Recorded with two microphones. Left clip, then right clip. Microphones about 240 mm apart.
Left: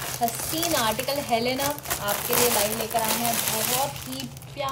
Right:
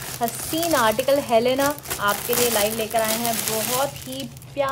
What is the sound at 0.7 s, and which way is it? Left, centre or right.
Speech, centre.